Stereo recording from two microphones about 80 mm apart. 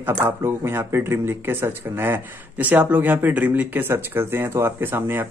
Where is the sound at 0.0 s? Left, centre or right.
Right.